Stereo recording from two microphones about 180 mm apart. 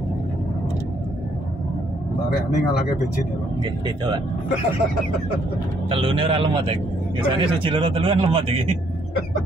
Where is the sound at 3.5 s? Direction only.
25° right (ahead or behind).